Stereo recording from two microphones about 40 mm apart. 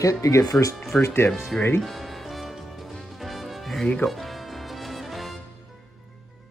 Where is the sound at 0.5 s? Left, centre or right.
Left.